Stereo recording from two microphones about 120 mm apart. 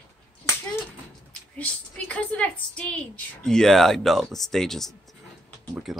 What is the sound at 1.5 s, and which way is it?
A woman's voice, 10° left (ahead or behind).